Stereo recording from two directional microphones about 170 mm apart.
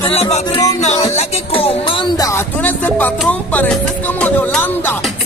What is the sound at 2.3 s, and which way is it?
Music, 10° left (ahead or behind).